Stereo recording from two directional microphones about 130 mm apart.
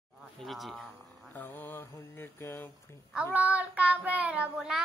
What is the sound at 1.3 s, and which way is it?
Mantra, 15° left (ahead or behind).